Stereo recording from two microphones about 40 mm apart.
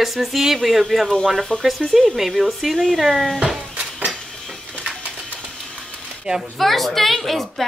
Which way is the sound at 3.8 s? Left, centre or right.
Right.